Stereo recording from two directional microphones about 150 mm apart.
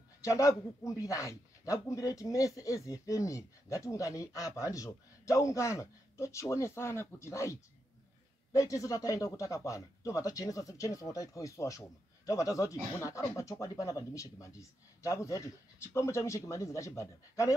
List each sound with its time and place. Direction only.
0.2 s speech: 20° left (ahead or behind)
8.5 s speech: 20° left (ahead or behind)